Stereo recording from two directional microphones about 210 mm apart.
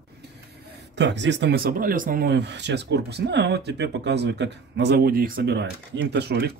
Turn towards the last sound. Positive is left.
turn(degrees=-50)  # may be behind; listen again after turning